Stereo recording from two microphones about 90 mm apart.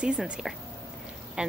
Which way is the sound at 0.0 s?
5° right (ahead or behind).